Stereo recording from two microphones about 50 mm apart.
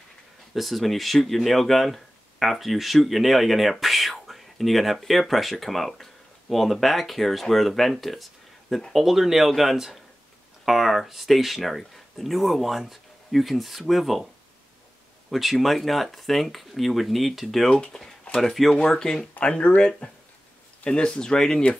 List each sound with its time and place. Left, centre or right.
0.6 s speech: centre
15.3 s speech: centre
17.7 s speech: centre
18.3 s speech: centre
19.4 s speech: left